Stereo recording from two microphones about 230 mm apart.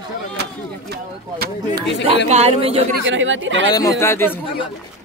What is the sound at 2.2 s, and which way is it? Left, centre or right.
Speech, right.